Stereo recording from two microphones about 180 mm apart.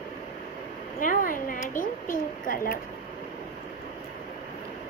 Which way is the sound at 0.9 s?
50° left (ahead or behind).